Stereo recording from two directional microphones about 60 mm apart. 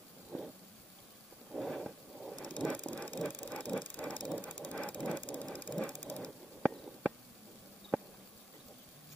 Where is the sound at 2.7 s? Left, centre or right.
Left.